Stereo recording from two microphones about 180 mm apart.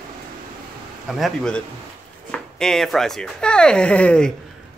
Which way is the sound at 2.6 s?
Centre (ahead or behind).